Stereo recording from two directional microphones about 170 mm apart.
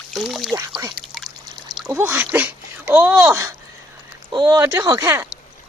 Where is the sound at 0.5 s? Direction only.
20° right (ahead or behind).